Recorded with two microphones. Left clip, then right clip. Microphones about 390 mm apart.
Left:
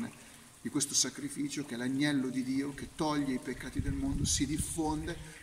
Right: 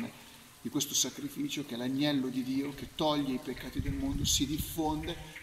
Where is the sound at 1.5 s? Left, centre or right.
Centre.